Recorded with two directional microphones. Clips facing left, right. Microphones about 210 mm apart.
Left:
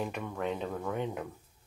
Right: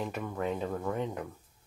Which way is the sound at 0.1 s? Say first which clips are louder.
Right 1 dB; 5° right (ahead or behind).